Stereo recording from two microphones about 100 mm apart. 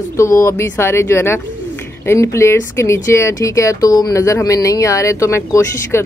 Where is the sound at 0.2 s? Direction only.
30° left (ahead or behind).